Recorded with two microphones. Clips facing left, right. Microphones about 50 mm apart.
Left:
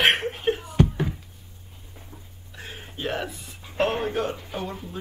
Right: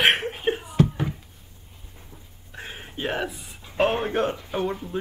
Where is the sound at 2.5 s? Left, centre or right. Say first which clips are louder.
Right 2 dB; right.